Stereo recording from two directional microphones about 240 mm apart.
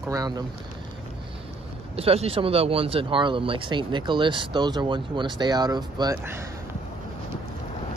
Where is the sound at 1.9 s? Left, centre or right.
Right.